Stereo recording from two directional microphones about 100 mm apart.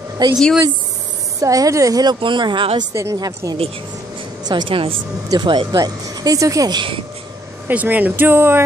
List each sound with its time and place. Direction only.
0.2 s speech: 45° right (ahead or behind)
1.4 s a woman's voice: 35° right (ahead or behind)
2.1 s speech: 55° right (ahead or behind)
2.9 s a woman's voice: 30° right (ahead or behind)
4.5 s speech: 50° right (ahead or behind)
5.8 s a woman's voice: 35° right (ahead or behind)
7.6 s speech: 15° right (ahead or behind)